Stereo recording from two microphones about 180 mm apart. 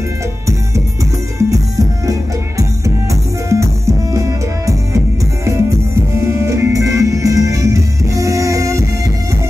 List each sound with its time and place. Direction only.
1.5 s music: 20° right (ahead or behind)